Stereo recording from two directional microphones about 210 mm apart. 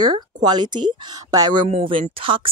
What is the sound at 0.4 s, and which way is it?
Speech, 20° right (ahead or behind).